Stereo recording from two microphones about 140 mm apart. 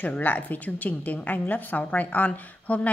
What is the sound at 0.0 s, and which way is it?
A woman's voice, 10° left (ahead or behind).